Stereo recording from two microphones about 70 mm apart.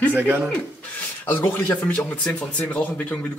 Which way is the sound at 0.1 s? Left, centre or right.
Right.